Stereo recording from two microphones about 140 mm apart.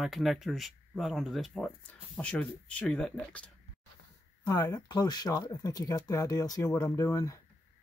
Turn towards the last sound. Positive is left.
turn(degrees=25)  # may be behind; listen again after turning